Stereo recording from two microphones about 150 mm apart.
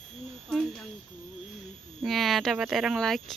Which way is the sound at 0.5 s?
5° left (ahead or behind).